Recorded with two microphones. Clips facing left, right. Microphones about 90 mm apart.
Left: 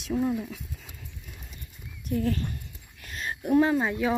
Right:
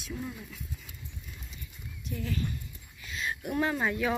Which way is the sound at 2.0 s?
55° left (ahead or behind).